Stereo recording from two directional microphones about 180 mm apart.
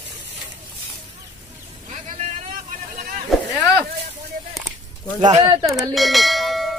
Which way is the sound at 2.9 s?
50° right (ahead or behind).